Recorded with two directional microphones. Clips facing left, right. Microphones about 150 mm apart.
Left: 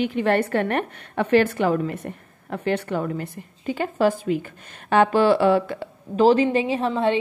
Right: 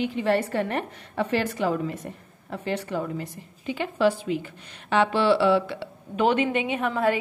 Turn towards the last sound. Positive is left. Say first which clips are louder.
# left 3 dB
turn(degrees=25)  # may be behind; listen again after turning